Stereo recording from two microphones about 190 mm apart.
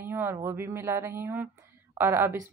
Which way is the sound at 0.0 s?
10° right (ahead or behind).